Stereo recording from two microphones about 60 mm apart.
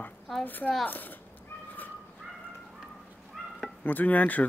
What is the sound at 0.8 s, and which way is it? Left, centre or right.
Speech, left.